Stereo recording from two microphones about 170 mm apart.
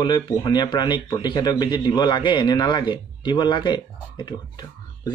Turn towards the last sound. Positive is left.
turn(degrees=25)  # may be behind; listen again after turning